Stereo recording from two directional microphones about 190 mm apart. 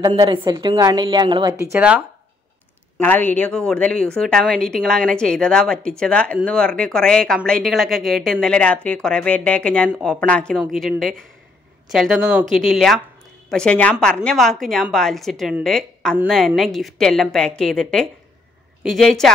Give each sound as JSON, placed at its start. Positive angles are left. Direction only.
{"t": 0.0, "sound": "a woman's voice", "side_deg": -25}
{"t": 3.0, "sound": "a woman's voice", "side_deg": 10}